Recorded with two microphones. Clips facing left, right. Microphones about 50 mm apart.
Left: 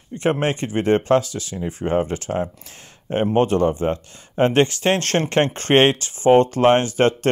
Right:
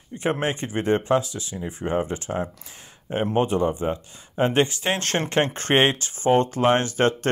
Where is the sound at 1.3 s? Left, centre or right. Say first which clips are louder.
Left 4 dB; left.